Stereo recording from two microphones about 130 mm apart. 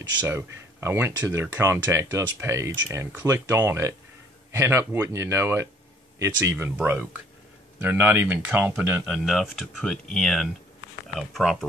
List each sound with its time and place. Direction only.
0.2 s speech: 15° right (ahead or behind)
9.0 s speech: 5° left (ahead or behind)